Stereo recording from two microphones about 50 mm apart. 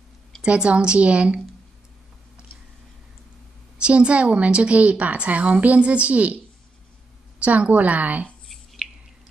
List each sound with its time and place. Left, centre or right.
0.4 s a woman's voice: centre
3.8 s a woman's voice: right
7.3 s a woman's voice: right